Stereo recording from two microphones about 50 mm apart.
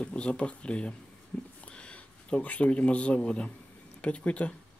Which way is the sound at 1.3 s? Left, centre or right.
Left.